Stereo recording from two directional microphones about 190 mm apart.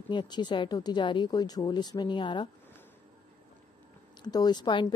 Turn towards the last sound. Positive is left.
turn(degrees=25)  # may be behind; listen again after turning